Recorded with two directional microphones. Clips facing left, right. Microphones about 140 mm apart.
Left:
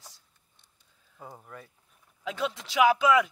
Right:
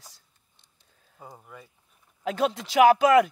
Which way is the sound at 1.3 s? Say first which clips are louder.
Left 1 dB; 5° right (ahead or behind).